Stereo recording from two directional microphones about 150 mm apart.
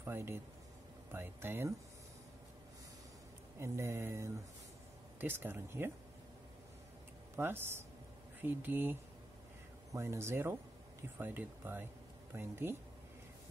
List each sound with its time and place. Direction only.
0.0 s speech: 15° right (ahead or behind)
3.5 s speech: 20° right (ahead or behind)
7.3 s speech: 15° right (ahead or behind)
9.9 s speech: 20° right (ahead or behind)